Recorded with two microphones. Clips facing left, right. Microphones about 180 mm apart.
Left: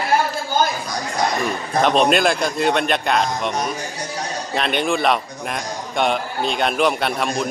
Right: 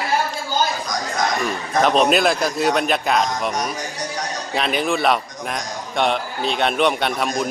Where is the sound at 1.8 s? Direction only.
Centre (ahead or behind).